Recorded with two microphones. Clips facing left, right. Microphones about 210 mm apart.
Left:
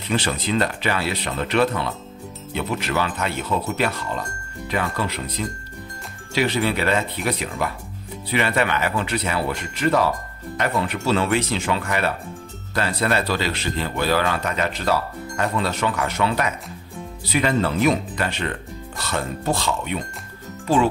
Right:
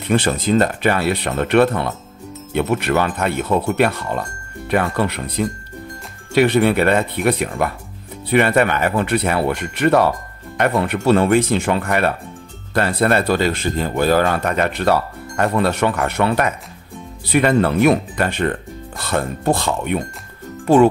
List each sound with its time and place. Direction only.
0.0 s speech: 55° right (ahead or behind)